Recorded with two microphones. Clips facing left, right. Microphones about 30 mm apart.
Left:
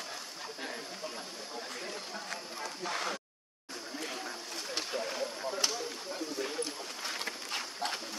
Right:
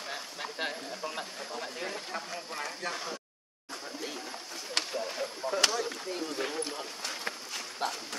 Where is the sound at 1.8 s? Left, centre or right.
Right.